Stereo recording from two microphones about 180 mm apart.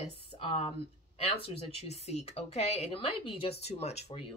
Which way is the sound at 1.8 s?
35° left (ahead or behind).